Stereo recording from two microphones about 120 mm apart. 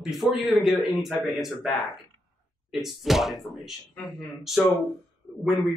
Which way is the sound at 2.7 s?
Centre (ahead or behind).